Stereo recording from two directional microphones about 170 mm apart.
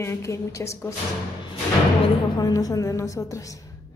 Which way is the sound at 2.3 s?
20° left (ahead or behind).